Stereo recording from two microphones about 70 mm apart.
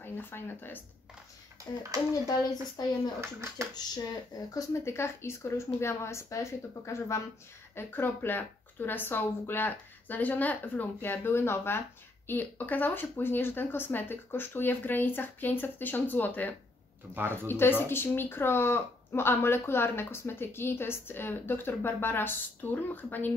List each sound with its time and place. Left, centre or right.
0.0 s speech: left
1.9 s speech: right
3.2 s speech: right
3.7 s speech: left
4.8 s speech: left
7.7 s speech: left